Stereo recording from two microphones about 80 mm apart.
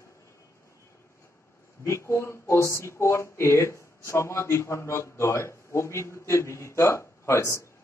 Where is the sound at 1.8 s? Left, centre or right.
Left.